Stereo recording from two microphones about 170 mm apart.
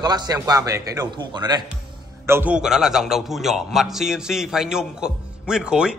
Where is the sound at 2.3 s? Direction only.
10° right (ahead or behind).